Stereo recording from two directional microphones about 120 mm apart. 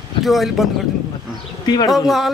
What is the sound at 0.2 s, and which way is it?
Speech, centre (ahead or behind).